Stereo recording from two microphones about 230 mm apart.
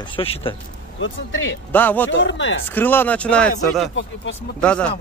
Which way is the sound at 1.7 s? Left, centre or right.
Centre.